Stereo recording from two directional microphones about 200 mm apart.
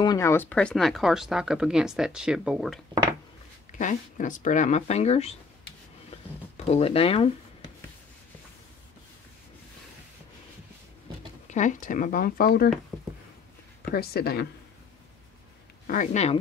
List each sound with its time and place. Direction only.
0.0 s speech: 15° left (ahead or behind); by 2.8 s centre (ahead or behind)
3.7 s speech: 40° left (ahead or behind)
6.0 s a sound: 30° left (ahead or behind)
11.5 s speech: 40° left (ahead or behind)
13.9 s speech: 50° left (ahead or behind)
15.9 s speech: 40° left (ahead or behind)